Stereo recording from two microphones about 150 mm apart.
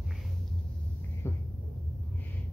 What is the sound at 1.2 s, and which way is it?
Hum, 15° left (ahead or behind).